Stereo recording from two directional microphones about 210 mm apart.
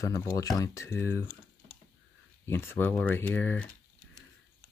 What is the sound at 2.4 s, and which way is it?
Speech, 10° left (ahead or behind).